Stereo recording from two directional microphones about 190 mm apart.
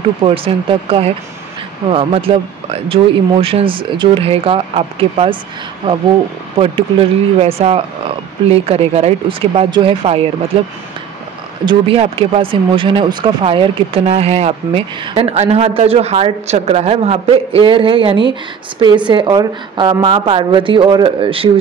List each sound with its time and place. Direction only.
0.2 s speech: 30° right (ahead or behind)
11.6 s speech: 25° right (ahead or behind)